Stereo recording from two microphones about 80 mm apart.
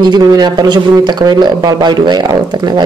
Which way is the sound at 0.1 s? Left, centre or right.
Right.